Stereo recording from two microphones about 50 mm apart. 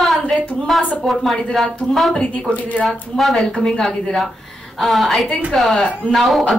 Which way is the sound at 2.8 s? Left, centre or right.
Centre.